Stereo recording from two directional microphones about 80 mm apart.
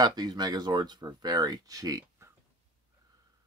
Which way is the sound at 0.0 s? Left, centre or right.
Right.